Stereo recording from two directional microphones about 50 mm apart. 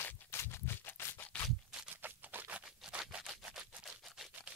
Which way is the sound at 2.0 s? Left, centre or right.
Right.